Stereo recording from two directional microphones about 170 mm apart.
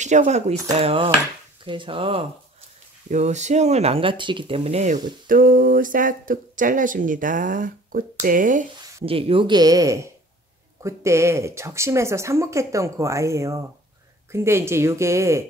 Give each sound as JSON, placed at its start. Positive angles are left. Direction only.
{"t": 0.0, "sound": "speech", "side_deg": -45}
{"t": 3.1, "sound": "speech", "side_deg": -45}
{"t": 5.2, "sound": "speech", "side_deg": -55}
{"t": 9.0, "sound": "speech", "side_deg": -35}